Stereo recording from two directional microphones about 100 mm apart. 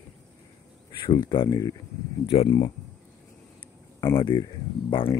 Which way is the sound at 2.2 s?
70° left (ahead or behind).